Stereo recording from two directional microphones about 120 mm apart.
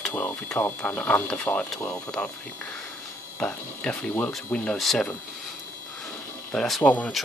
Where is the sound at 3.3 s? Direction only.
5° left (ahead or behind).